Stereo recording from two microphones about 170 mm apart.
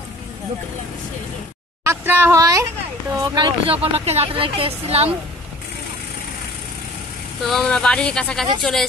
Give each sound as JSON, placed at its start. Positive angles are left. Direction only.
{"t": 1.9, "sound": "speech", "side_deg": -15}
{"t": 7.4, "sound": "speech", "side_deg": 5}